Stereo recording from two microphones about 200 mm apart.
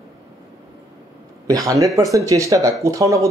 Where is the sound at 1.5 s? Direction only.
15° right (ahead or behind).